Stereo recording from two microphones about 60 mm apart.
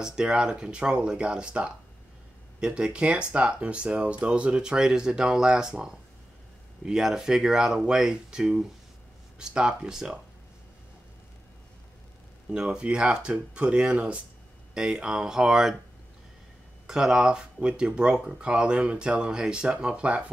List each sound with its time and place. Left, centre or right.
0.0 s speech: centre
12.4 s speech: centre
16.8 s speech: centre